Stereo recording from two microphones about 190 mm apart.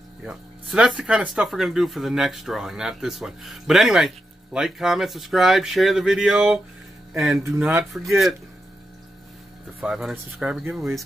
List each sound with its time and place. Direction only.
0.2 s speech: 5° right (ahead or behind)
7.5 s speech: 10° right (ahead or behind)
8.1 s speech: centre (ahead or behind)
9.8 s speech: centre (ahead or behind)